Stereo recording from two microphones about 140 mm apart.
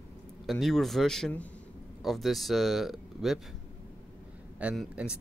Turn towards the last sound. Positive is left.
turn(degrees=-5)  # may be behind; listen again after turning